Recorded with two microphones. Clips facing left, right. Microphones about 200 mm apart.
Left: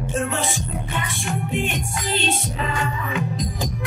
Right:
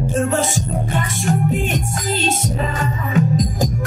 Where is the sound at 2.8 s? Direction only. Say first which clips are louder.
Right 6 dB; 45° right (ahead or behind).